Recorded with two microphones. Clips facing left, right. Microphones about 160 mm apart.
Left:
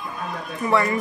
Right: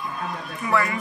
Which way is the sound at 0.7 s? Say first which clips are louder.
Left 3 dB; 25° left (ahead or behind).